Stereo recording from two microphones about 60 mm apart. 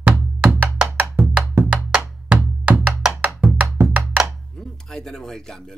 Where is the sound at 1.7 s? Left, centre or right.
Right.